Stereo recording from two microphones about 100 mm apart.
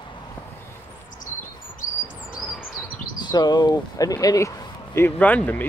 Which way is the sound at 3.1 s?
45° left (ahead or behind).